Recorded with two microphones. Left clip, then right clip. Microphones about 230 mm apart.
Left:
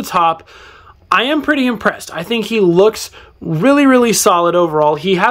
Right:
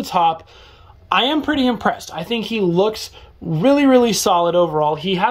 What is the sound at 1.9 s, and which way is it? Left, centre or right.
Speech, centre.